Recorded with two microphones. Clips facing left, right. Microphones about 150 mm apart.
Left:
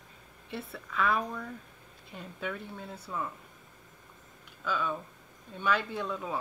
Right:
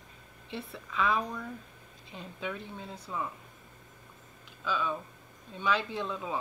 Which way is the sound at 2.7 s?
20° right (ahead or behind).